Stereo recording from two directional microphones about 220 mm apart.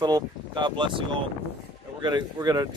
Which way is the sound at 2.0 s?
20° right (ahead or behind).